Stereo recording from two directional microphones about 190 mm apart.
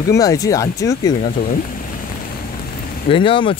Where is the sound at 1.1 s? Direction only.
45° left (ahead or behind).